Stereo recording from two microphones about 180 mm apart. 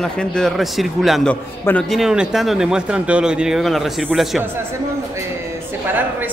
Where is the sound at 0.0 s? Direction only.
5° left (ahead or behind).